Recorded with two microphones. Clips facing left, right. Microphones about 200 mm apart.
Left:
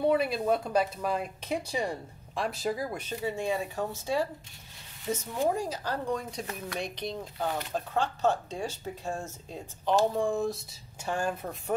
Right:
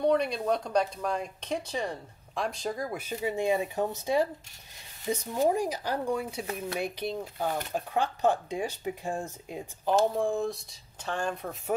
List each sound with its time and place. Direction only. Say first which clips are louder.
0.0 s speech: even; 5° left (ahead or behind)
3.2 s speech: right 4 dB; 15° right (ahead or behind)
10.1 s speech: even; centre (ahead or behind)